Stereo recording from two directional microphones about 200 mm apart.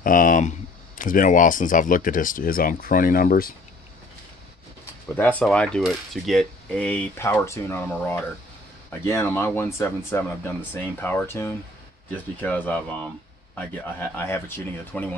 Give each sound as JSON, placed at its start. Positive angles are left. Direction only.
{"t": 0.0, "sound": "speech", "side_deg": 40}
{"t": 5.0, "sound": "coin", "side_deg": 10}